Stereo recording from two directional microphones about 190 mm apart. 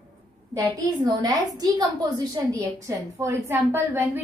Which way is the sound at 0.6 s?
20° right (ahead or behind).